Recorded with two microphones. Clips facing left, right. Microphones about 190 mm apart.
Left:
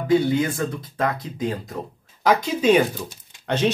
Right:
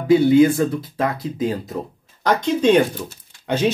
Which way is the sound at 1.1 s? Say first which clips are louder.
Right 4 dB; 10° right (ahead or behind).